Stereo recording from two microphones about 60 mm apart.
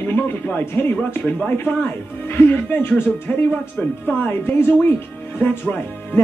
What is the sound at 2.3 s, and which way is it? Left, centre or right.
Speech, left.